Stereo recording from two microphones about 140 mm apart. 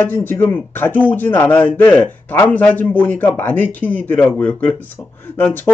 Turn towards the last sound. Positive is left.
turn(degrees=15)  # may be behind; listen again after turning